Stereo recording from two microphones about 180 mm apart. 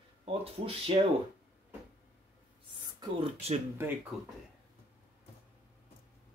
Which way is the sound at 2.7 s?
25° right (ahead or behind).